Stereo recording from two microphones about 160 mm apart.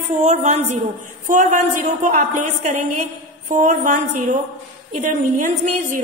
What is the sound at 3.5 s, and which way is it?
Speech, 55° right (ahead or behind).